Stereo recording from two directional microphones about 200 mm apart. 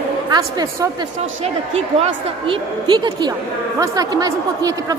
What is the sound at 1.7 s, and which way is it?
A woman's voice, 30° right (ahead or behind).